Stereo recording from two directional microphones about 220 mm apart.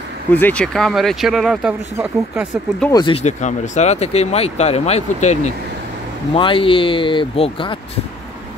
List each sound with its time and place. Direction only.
0.3 s speech: 5° left (ahead or behind)
2.9 s speech: 20° left (ahead or behind)